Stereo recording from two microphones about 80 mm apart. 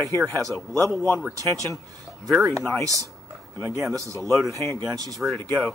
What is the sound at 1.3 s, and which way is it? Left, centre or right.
Speech, right.